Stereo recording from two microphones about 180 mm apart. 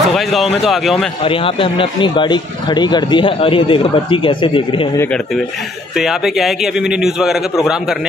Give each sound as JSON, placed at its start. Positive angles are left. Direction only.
{"t": 0.1, "sound": "a man's voice", "side_deg": 0}
{"t": 1.2, "sound": "speech", "side_deg": 30}
{"t": 4.9, "sound": "speech", "side_deg": 10}
{"t": 5.9, "sound": "a man's voice", "side_deg": 0}